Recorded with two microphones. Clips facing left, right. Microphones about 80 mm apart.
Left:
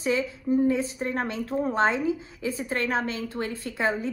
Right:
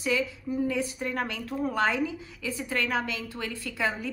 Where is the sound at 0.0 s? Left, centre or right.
Left.